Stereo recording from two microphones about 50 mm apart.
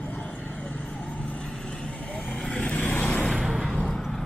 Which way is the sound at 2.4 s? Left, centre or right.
Centre.